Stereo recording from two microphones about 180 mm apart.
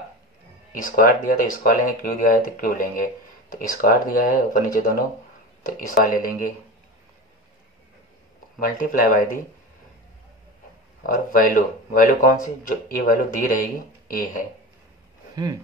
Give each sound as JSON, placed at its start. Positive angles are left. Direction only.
{"t": 0.7, "sound": "speech", "side_deg": 50}
{"t": 8.5, "sound": "speech", "side_deg": 50}
{"t": 11.2, "sound": "speech", "side_deg": 50}